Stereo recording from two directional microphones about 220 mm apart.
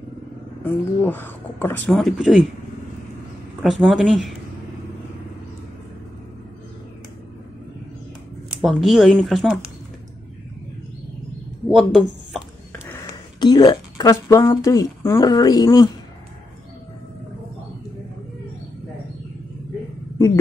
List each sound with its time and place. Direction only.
0.7 s speech: 10° left (ahead or behind)
3.6 s speech: centre (ahead or behind)
8.5 s speech: centre (ahead or behind)
11.7 s speech: centre (ahead or behind)
12.7 s speech: 10° left (ahead or behind)